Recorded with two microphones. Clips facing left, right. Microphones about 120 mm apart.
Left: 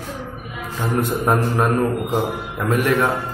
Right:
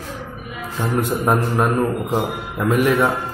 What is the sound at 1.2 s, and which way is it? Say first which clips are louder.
A man's voice: even; centre (ahead or behind).